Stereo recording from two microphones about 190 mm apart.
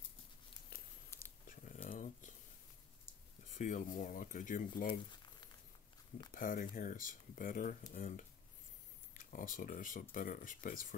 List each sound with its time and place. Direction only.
1.5 s a sound: 45° left (ahead or behind)
3.4 s speech: 40° left (ahead or behind)
5.1 s crumpling: 25° left (ahead or behind)
6.3 s speech: 45° left (ahead or behind)